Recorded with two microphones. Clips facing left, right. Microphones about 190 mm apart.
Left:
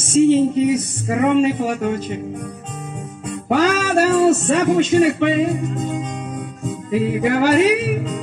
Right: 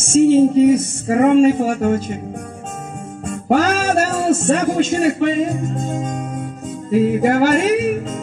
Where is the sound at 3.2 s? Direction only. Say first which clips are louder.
Right 1 dB; 45° right (ahead or behind).